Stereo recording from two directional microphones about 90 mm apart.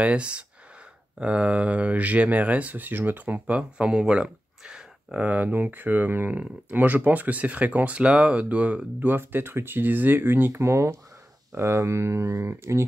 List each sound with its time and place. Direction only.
0.0 s speech: 10° right (ahead or behind); by 12.8 s 30° right (ahead or behind)